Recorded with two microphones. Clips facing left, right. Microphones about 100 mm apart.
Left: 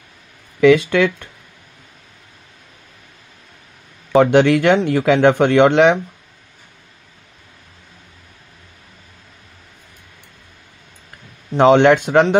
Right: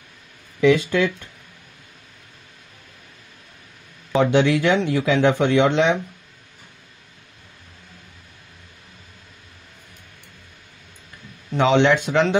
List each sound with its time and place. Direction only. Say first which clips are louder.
0.6 s speech: left 5 dB; 70° left (ahead or behind)
4.1 s speech: left 5 dB; 55° left (ahead or behind)
11.5 s speech: left 6 dB; 50° left (ahead or behind)